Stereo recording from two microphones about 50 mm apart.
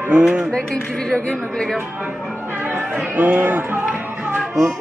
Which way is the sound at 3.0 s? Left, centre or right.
Right.